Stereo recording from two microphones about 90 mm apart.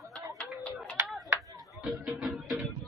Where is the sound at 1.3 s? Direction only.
40° right (ahead or behind).